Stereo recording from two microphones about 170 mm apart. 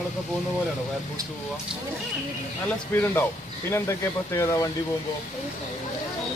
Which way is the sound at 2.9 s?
10° left (ahead or behind).